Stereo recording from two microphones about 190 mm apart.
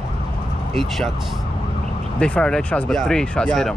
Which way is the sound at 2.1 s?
5° left (ahead or behind).